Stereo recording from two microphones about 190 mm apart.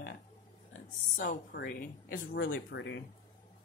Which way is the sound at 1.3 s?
55° left (ahead or behind).